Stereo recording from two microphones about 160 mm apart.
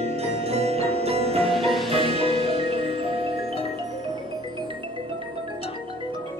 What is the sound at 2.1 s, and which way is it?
Music, 35° left (ahead or behind).